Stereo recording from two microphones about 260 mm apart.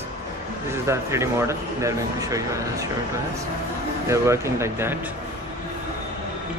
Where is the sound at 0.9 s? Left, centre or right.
Centre.